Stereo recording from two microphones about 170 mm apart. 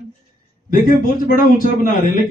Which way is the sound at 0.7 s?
55° left (ahead or behind).